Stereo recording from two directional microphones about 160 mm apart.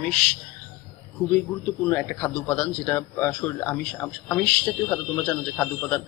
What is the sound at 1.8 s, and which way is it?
A man's voice, 10° left (ahead or behind).